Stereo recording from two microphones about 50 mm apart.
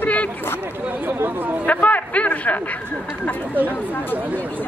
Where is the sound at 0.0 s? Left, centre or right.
Left.